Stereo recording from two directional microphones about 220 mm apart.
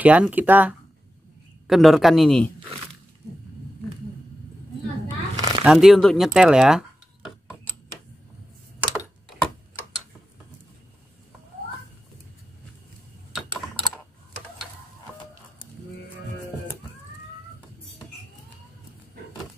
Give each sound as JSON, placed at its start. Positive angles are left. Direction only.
{"t": 0.0, "sound": "speech", "side_deg": -5}
{"t": 5.4, "sound": "a sound", "side_deg": -20}
{"t": 5.7, "sound": "speech", "side_deg": 0}